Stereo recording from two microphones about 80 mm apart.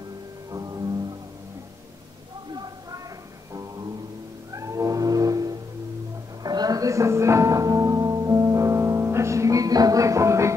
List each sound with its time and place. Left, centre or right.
0.5 s music: right
2.5 s a sound: right
3.5 s music: right
4.5 s cat: right
6.4 s music: right